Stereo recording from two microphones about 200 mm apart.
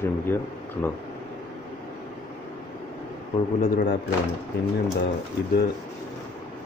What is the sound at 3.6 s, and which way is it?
Speech, 45° left (ahead or behind).